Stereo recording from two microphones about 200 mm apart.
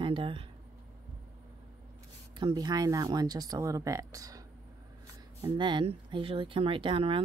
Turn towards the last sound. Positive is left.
turn(degrees=-25)  # may be behind; listen again after turning